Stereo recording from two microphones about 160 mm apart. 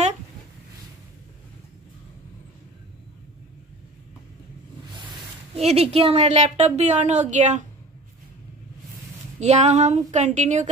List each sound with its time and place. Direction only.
5.6 s speech: 40° right (ahead or behind)
9.4 s speech: 45° right (ahead or behind)